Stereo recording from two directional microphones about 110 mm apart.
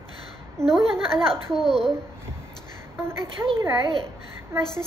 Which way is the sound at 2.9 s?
25° right (ahead or behind).